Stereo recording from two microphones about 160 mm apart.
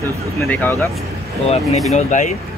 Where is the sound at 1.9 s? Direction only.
50° left (ahead or behind).